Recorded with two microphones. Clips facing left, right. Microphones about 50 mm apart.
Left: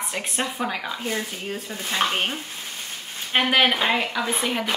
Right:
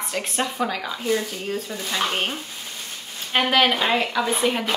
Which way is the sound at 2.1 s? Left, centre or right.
Centre.